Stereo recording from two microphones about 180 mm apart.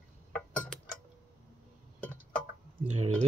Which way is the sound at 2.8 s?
40° right (ahead or behind).